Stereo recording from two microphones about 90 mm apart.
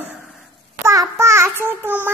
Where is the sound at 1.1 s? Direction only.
30° right (ahead or behind).